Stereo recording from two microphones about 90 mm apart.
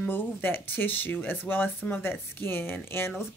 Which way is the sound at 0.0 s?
25° left (ahead or behind).